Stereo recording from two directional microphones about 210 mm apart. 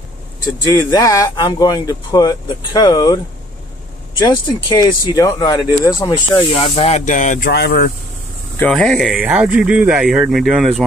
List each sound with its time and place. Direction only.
0.7 s speech: 15° left (ahead or behind)
4.2 s speech: 20° left (ahead or behind)
6.1 s speech: 30° left (ahead or behind)
7.5 s speech: 50° left (ahead or behind)
8.5 s speech: 5° left (ahead or behind)